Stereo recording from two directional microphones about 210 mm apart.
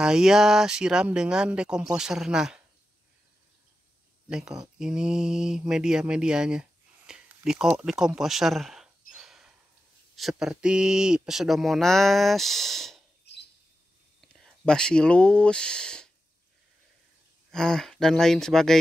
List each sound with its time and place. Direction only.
0.0 s speech: 5° right (ahead or behind)
4.3 s speech: 5° right (ahead or behind)
8.2 s a sound: centre (ahead or behind)
10.1 s speech: centre (ahead or behind)
13.3 s bird: 55° left (ahead or behind)
14.2 s speech: centre (ahead or behind)
17.5 s speech: 5° left (ahead or behind)